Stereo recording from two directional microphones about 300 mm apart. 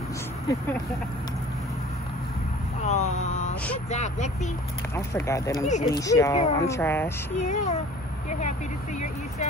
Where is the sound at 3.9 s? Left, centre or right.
Left.